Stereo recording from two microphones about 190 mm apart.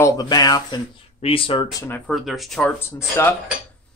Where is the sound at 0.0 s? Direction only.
20° left (ahead or behind); by 2.7 s centre (ahead or behind).